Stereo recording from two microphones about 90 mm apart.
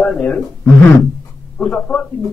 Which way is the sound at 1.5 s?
15° left (ahead or behind).